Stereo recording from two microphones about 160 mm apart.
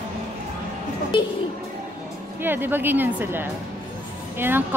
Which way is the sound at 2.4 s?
15° right (ahead or behind).